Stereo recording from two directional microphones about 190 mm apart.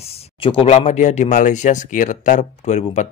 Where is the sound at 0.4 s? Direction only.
30° left (ahead or behind).